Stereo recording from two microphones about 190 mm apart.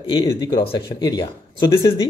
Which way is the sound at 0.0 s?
25° left (ahead or behind).